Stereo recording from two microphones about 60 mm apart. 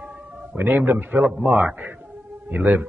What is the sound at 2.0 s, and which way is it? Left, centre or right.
Music, centre.